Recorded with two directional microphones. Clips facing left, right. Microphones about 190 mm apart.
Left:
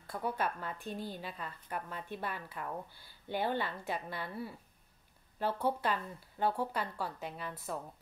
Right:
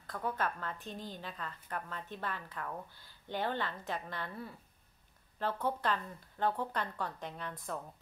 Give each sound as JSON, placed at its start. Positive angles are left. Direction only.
{"t": 0.0, "sound": "a woman's voice", "side_deg": 10}